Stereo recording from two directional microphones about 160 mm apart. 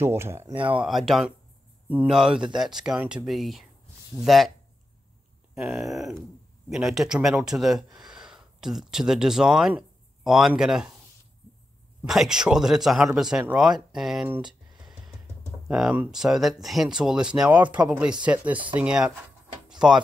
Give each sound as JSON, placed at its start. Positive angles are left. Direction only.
{"t": 0.0, "sound": "speech", "side_deg": -15}
{"t": 0.7, "sound": "speech", "side_deg": 0}
{"t": 5.5, "sound": "speech", "side_deg": -5}
{"t": 12.1, "sound": "speech", "side_deg": -5}
{"t": 14.8, "sound": "music", "side_deg": -5}
{"t": 15.7, "sound": "speech", "side_deg": -5}
{"t": 19.7, "sound": "a sound", "side_deg": -5}